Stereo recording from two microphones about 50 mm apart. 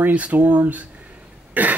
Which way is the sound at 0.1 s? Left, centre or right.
Right.